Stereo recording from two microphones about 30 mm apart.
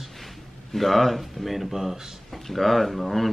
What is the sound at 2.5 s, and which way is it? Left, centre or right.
Speech, centre.